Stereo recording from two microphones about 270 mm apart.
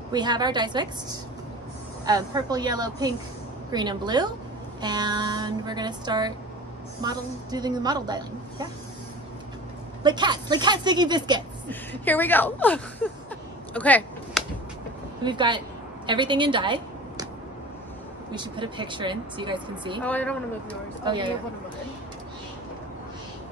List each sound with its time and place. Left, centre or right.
0.1 s a woman's voice: centre
10.0 s a woman's voice: centre
11.7 s speech: centre
13.7 s a sound: centre
15.2 s a woman's voice: centre
18.3 s a woman's voice: centre
20.0 s speech: centre
21.0 s a woman's voice: centre